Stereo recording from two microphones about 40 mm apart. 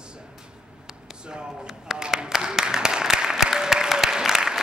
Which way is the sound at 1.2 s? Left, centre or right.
Right.